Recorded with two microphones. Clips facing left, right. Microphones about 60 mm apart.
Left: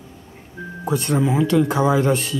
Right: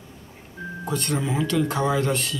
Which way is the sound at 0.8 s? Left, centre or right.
Centre.